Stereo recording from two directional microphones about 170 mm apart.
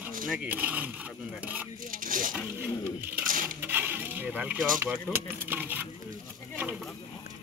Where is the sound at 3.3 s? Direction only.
55° right (ahead or behind).